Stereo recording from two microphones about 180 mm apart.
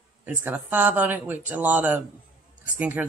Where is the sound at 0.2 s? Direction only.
10° right (ahead or behind).